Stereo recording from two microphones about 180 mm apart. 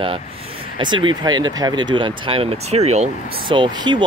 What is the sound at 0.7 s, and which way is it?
Speech, 25° right (ahead or behind).